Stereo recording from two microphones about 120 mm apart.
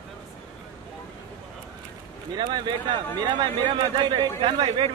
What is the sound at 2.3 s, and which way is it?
Speech, 40° right (ahead or behind).